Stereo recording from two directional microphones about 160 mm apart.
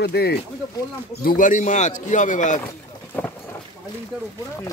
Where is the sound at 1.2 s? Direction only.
60° left (ahead or behind).